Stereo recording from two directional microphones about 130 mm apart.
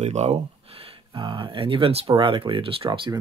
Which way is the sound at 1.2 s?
40° right (ahead or behind).